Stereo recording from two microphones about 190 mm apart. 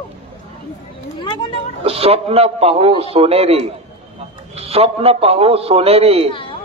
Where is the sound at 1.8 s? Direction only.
30° right (ahead or behind).